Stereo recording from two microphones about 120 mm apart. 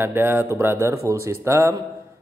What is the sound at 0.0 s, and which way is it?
Speech, 20° right (ahead or behind).